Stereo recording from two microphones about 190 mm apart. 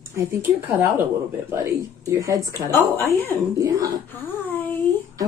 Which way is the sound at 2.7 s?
15° left (ahead or behind).